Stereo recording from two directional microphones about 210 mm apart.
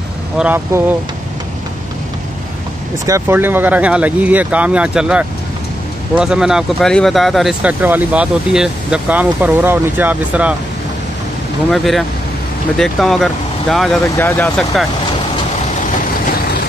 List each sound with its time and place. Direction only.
0.4 s speech: 10° right (ahead or behind)
3.1 s speech: 10° right (ahead or behind)
11.7 s speech: centre (ahead or behind)
14.0 s speech: 10° left (ahead or behind)
14.7 s speech: centre (ahead or behind)